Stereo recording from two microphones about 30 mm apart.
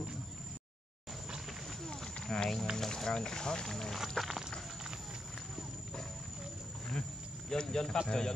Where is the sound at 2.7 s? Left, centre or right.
Centre.